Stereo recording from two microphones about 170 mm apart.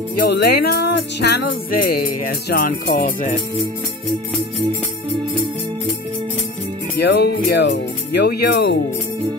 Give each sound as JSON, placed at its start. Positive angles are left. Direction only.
{"t": 0.2, "sound": "music", "side_deg": 70}
{"t": 7.0, "sound": "speech", "side_deg": 75}